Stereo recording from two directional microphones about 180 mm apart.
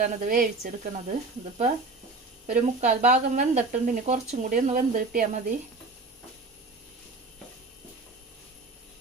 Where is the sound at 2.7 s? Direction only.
45° right (ahead or behind).